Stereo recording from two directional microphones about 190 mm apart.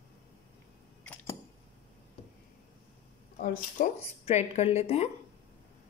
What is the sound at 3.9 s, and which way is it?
A woman's voice, 35° left (ahead or behind).